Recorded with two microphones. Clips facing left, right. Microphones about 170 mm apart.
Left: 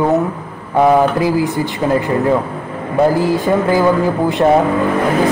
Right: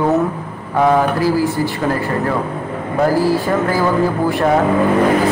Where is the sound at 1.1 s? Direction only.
20° left (ahead or behind).